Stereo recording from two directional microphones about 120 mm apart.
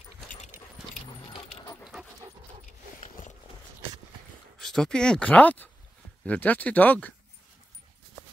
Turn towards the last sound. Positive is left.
turn(degrees=15)  # may be behind; listen again after turning